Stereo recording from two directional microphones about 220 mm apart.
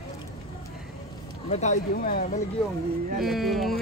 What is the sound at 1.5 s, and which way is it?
Speech, 35° left (ahead or behind).